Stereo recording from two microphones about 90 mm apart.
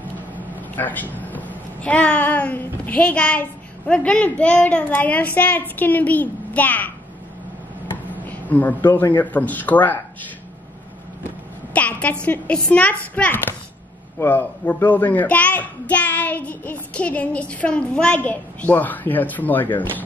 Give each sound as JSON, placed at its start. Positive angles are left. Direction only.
{"t": 0.6, "sound": "a woman's voice", "side_deg": 20}
{"t": 8.1, "sound": "a man's voice", "side_deg": 20}
{"t": 11.7, "sound": "a woman's voice", "side_deg": 15}